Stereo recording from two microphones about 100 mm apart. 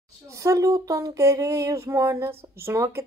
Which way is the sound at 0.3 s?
35° right (ahead or behind).